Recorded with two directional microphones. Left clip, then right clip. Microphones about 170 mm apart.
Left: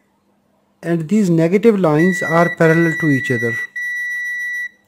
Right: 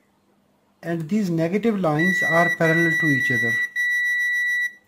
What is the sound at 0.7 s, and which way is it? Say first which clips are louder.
Speech: left 8 dB; 45° left (ahead or behind).